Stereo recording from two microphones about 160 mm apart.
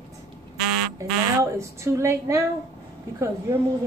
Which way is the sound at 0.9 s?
20° right (ahead or behind).